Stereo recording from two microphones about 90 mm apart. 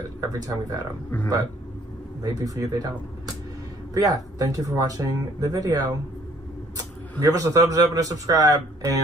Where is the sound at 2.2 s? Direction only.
40° right (ahead or behind).